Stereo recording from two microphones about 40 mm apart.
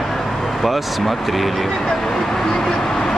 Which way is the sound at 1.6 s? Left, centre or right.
Centre.